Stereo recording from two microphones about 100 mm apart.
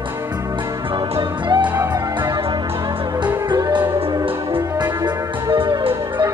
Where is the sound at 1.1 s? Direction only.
50° right (ahead or behind).